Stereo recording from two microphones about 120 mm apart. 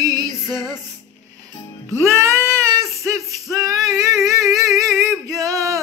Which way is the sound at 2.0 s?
25° right (ahead or behind).